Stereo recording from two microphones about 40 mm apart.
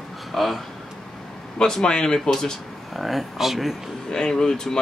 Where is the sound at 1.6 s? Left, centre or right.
Centre.